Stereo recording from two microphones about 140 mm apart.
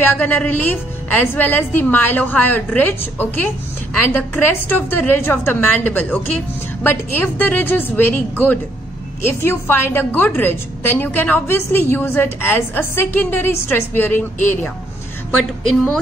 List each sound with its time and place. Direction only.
0.0 s a woman's voice: 15° left (ahead or behind)